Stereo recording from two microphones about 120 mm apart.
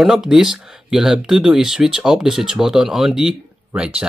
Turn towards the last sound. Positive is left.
turn(degrees=-5)  # may be behind; listen again after turning